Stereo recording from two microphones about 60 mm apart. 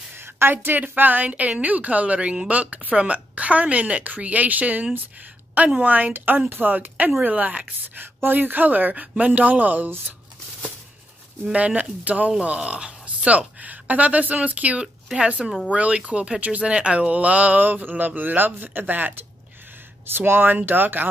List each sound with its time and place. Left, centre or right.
0.1 s a woman's voice: right
11.5 s a woman's voice: right
12.3 s a woman's voice: centre; by 21.1 s right